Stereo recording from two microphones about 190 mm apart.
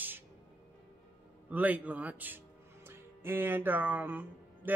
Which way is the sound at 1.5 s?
10° right (ahead or behind).